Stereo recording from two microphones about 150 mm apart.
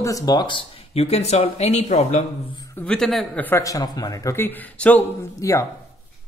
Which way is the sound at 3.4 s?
20° left (ahead or behind).